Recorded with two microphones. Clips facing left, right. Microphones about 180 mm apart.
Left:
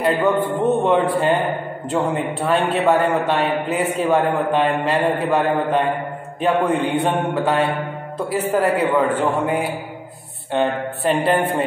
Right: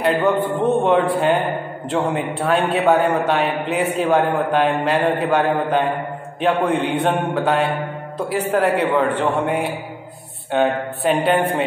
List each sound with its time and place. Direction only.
0.0 s a man's voice: centre (ahead or behind)